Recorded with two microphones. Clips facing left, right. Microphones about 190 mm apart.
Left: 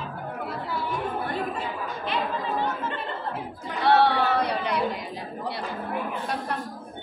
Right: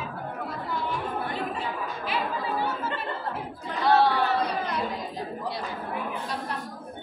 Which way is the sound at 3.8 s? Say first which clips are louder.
Left 1 dB; 65° left (ahead or behind).